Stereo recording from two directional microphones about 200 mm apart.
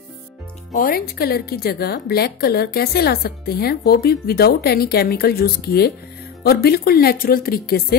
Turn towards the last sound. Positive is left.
turn(degrees=50)  # may be behind; listen again after turning